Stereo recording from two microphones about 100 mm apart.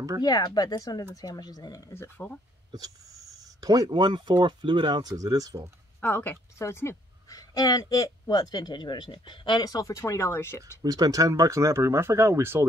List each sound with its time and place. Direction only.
0.2 s speech: 45° left (ahead or behind)
1.9 s speech: 25° left (ahead or behind)
3.6 s speech: 40° right (ahead or behind)
5.1 s speech: 35° right (ahead or behind)
5.9 s a woman's voice: 20° left (ahead or behind)
7.3 s speech: 40° left (ahead or behind)
9.7 s speech: 35° left (ahead or behind)
10.8 s speech: 40° right (ahead or behind)